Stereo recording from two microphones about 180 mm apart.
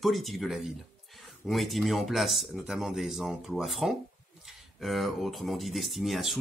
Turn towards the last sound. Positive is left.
turn(degrees=0)  # may be behind; listen again after turning